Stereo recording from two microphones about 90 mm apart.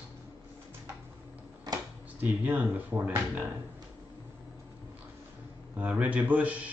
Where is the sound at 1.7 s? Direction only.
45° right (ahead or behind).